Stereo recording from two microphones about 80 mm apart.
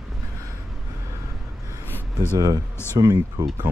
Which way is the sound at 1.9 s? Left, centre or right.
Left.